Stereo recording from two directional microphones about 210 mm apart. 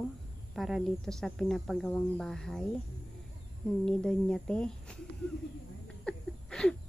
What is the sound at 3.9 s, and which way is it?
Speech, 5° left (ahead or behind).